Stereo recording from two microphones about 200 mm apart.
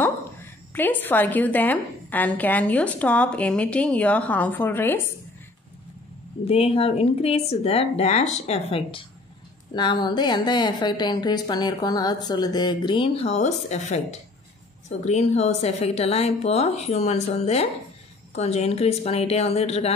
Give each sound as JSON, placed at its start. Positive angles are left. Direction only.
{"t": 0.7, "sound": "a woman's voice", "side_deg": 10}
{"t": 6.4, "sound": "a woman's voice", "side_deg": 30}